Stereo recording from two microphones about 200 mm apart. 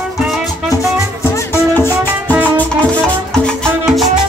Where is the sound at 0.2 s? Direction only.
Centre (ahead or behind).